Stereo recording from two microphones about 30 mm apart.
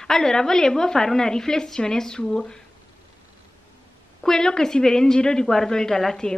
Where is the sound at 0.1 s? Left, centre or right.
Centre.